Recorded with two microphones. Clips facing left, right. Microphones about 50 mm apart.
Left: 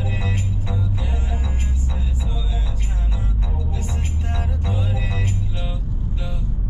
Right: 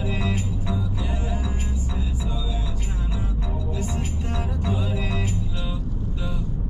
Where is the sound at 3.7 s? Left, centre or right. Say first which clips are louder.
Right 1 dB; left.